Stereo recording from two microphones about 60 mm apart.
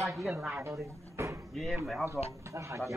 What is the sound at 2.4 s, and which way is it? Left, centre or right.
Speech, right.